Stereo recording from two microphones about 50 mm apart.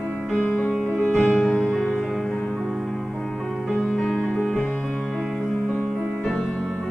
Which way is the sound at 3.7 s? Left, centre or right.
Centre.